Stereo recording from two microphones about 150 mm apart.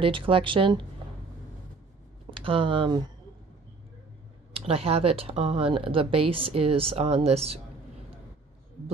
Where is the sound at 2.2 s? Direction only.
35° right (ahead or behind).